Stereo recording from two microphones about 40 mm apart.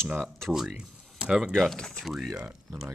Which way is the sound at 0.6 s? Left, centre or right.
Right.